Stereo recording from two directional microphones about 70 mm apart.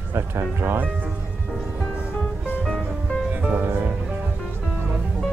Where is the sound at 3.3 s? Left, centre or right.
Right.